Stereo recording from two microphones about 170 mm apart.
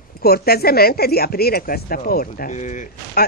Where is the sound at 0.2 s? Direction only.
65° left (ahead or behind); by 2.9 s 45° left (ahead or behind).